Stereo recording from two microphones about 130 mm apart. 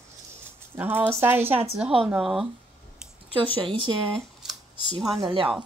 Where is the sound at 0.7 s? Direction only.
15° right (ahead or behind).